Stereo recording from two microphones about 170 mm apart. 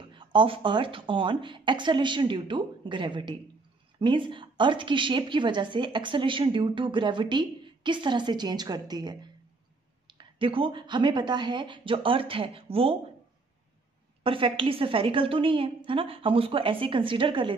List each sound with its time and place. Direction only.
0.0 s a woman's voice: 30° right (ahead or behind)
14.2 s a woman's voice: 30° right (ahead or behind)